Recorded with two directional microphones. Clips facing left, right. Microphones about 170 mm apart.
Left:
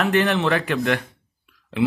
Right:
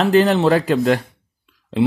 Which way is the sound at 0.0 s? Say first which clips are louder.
Right 6 dB; 35° right (ahead or behind).